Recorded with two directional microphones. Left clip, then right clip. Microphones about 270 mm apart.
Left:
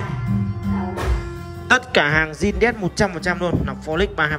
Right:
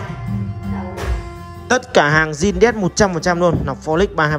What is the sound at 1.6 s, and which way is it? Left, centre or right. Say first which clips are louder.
Music: right 1 dB; centre.